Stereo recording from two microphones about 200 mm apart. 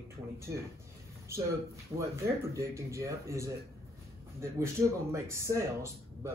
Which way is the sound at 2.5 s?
15° right (ahead or behind).